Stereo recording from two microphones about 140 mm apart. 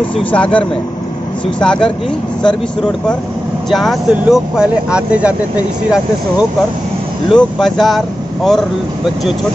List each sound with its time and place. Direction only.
0.3 s speech: 10° left (ahead or behind); by 5.3 s 10° right (ahead or behind)
7.2 s speech: centre (ahead or behind)